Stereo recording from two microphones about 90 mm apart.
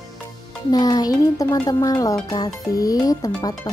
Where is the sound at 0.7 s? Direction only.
50° left (ahead or behind).